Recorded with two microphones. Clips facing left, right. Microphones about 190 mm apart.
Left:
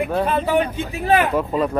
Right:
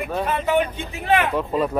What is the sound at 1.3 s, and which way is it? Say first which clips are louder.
Speech: left 2 dB; centre (ahead or behind).